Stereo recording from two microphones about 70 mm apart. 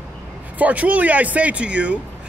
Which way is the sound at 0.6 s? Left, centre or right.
Right.